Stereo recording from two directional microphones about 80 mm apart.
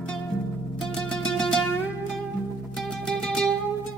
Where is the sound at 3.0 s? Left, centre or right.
Centre.